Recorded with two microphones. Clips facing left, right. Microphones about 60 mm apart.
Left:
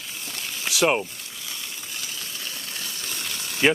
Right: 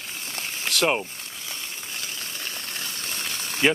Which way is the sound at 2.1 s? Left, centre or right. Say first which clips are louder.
Right 1 dB; right.